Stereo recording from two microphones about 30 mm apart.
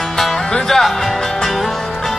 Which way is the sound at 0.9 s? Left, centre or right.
Centre.